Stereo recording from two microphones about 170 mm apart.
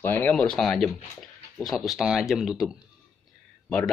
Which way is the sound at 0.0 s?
10° left (ahead or behind).